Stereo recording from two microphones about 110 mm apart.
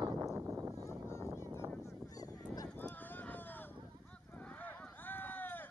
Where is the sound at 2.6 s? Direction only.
15° left (ahead or behind).